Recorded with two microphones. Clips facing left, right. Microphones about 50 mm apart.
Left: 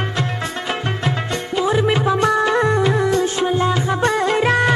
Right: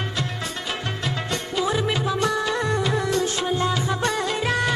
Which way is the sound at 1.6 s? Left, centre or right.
Left.